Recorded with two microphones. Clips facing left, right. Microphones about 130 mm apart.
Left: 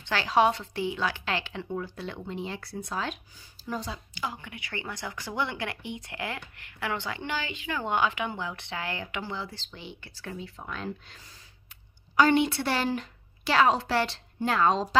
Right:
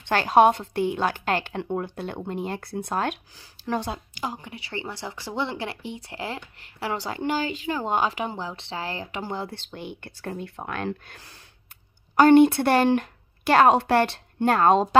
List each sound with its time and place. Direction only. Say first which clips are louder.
0.0 s a woman's voice: right 6 dB; 50° right (ahead or behind)
3.3 s speech: right 7 dB; 80° right
12.2 s a woman's voice: right 8 dB; 50° right (ahead or behind)